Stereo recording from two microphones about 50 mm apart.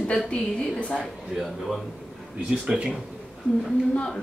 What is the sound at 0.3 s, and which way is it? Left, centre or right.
Speech, left.